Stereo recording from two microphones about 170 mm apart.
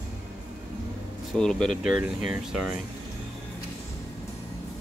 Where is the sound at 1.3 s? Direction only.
5° left (ahead or behind).